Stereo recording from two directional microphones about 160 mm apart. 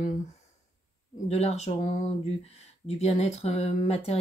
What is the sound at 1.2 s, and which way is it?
Speech, 40° left (ahead or behind).